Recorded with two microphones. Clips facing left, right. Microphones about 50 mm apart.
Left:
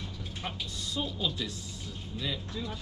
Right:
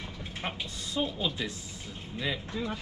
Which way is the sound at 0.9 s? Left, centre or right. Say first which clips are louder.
Right 3 dB; right.